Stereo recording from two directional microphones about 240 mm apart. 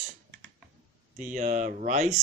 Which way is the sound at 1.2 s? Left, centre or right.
Right.